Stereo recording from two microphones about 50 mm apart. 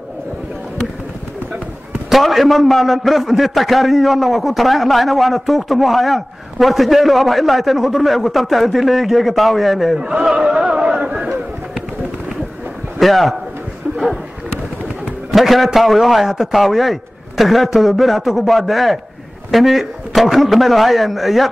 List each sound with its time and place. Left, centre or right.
2.0 s a man's voice: centre
9.9 s a sound: centre
13.0 s a man's voice: centre
15.3 s a man's voice: centre